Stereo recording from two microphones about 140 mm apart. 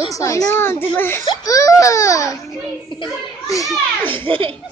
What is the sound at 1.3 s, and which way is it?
A child's voice, 25° left (ahead or behind).